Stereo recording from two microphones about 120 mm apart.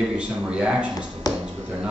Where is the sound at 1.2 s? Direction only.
30° left (ahead or behind).